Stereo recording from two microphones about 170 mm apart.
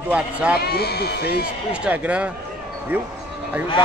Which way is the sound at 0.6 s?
70° left (ahead or behind).